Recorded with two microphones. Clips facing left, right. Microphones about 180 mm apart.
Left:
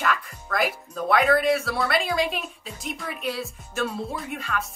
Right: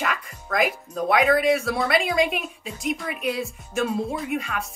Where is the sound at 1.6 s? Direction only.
20° right (ahead or behind).